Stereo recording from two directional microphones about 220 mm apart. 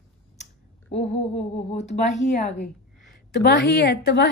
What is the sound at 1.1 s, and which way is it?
Speech, 30° left (ahead or behind).